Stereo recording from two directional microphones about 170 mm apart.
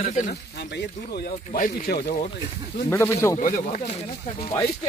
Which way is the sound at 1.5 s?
55° left (ahead or behind).